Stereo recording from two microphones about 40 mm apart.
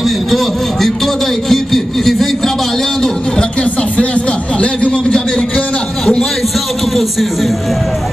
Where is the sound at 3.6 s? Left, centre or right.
Left.